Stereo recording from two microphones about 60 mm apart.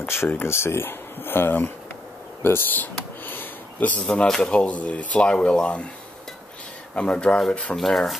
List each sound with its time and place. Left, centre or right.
0.4 s speech: left
4.0 s speech: centre
7.0 s speech: centre